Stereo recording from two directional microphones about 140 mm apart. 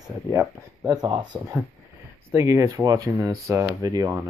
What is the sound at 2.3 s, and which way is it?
Speech, 20° right (ahead or behind).